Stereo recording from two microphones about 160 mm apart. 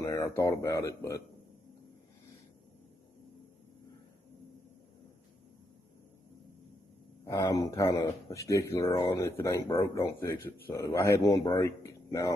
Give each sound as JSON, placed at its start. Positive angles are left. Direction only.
{"t": 0.0, "sound": "a sound", "side_deg": 20}
{"t": 0.4, "sound": "a man's voice", "side_deg": 20}
{"t": 7.2, "sound": "a man's voice", "side_deg": 20}